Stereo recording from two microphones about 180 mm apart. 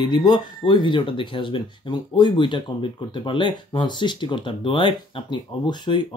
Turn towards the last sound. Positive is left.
turn(degrees=25)  # may be behind; listen again after turning